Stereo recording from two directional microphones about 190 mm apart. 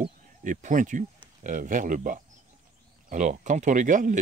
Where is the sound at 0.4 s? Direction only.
45° right (ahead or behind).